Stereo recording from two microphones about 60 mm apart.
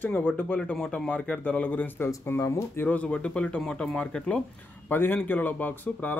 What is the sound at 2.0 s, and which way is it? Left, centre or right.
Speech, left.